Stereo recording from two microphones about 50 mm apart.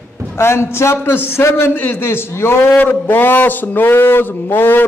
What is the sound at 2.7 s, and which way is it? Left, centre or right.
Speech, left.